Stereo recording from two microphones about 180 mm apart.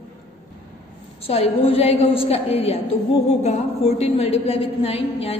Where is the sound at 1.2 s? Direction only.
35° left (ahead or behind).